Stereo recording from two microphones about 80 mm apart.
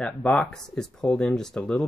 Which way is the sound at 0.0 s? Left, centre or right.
Centre.